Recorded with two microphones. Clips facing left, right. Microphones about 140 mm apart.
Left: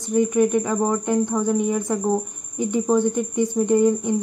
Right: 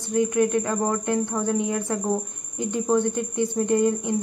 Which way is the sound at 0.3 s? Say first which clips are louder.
Left 3 dB; 15° left (ahead or behind).